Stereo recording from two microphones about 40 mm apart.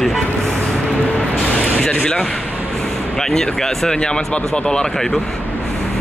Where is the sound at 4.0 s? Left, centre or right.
Left.